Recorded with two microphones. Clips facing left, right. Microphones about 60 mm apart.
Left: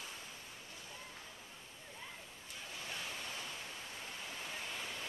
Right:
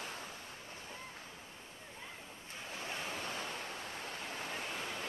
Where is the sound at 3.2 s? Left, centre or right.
Right.